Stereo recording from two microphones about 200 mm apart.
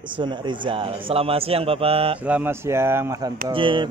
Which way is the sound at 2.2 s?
10° right (ahead or behind).